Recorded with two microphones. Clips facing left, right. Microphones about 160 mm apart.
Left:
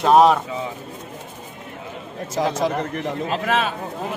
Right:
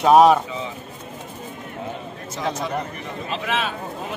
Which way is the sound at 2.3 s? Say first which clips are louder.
Left 5 dB; 90° left.